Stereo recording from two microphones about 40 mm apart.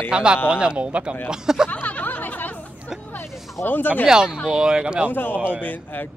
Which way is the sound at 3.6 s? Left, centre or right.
Left.